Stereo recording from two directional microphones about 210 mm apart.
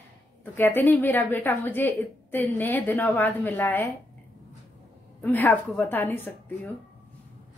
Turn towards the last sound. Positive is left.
turn(degrees=10)  # may be behind; listen again after turning